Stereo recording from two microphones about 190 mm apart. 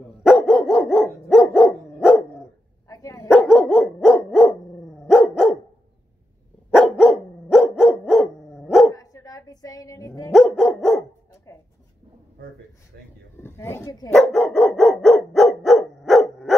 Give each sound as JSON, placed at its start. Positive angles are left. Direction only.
{"t": 0.2, "sound": "dog", "side_deg": 0}
{"t": 2.9, "sound": "dog", "side_deg": 15}
{"t": 3.5, "sound": "dog", "side_deg": 5}
{"t": 6.7, "sound": "dog", "side_deg": 0}
{"t": 8.9, "sound": "dog", "side_deg": 20}
{"t": 10.3, "sound": "dog", "side_deg": 0}
{"t": 12.9, "sound": "a sound", "side_deg": -65}
{"t": 13.4, "sound": "a sound", "side_deg": 10}
{"t": 14.1, "sound": "dog", "side_deg": 5}